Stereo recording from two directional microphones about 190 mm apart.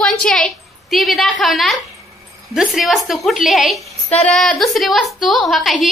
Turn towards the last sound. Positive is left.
turn(degrees=0)  # may be behind; listen again after turning